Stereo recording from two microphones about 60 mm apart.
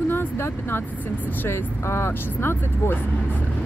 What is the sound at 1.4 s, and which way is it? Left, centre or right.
Speech, left.